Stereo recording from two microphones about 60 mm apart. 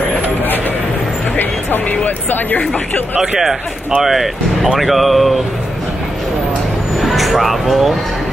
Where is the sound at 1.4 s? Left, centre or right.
Left.